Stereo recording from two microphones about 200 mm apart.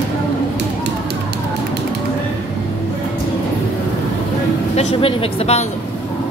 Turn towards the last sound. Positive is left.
turn(degrees=30)  # may be behind; listen again after turning